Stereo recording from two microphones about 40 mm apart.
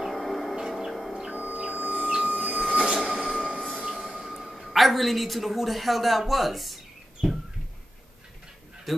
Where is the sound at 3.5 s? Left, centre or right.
Left.